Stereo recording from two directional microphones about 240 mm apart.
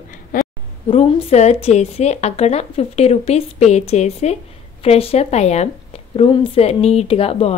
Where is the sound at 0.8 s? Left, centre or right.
Left.